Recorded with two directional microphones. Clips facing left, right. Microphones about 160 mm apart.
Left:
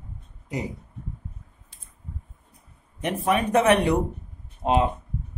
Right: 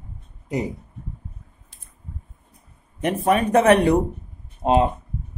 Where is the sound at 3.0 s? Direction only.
40° right (ahead or behind).